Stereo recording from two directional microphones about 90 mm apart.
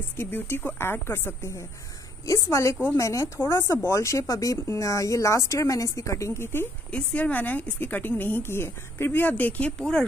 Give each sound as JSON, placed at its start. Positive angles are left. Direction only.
{"t": 0.2, "sound": "speech", "side_deg": 25}
{"t": 6.9, "sound": "speech", "side_deg": 15}